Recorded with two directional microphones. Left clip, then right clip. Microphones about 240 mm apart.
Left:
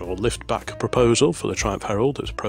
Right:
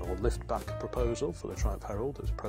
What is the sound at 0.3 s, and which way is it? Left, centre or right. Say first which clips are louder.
Speech: left 9 dB; left.